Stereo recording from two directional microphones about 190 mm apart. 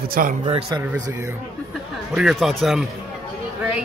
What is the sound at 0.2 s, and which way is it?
Speech, 45° right (ahead or behind).